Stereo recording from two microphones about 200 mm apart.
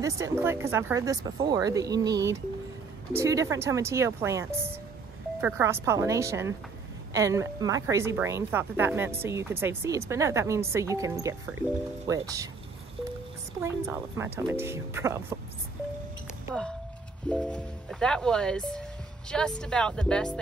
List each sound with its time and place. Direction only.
0.0 s a woman's voice: 15° right (ahead or behind)
13.6 s a woman's voice: 10° right (ahead or behind)
17.3 s speech: 5° left (ahead or behind)